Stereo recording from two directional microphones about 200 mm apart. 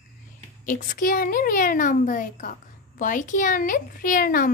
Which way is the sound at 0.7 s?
40° left (ahead or behind).